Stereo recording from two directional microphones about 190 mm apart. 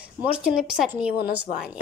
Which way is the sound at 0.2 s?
5° right (ahead or behind).